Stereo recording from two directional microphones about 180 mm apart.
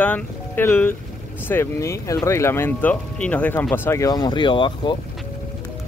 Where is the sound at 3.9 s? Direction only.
20° left (ahead or behind).